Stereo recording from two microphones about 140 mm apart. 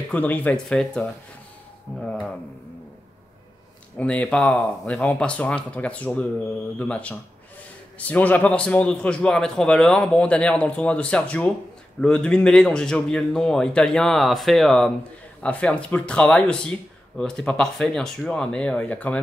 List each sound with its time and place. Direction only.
0.1 s a man's voice: 10° left (ahead or behind)
4.0 s a man's voice: 10° left (ahead or behind)